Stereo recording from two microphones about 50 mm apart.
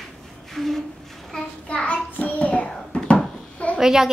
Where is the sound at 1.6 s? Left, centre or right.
Left.